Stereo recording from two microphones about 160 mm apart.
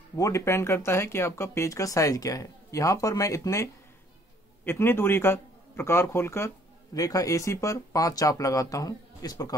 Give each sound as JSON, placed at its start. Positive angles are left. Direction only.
{"t": 0.2, "sound": "a man's voice", "side_deg": 20}
{"t": 4.6, "sound": "a man's voice", "side_deg": 15}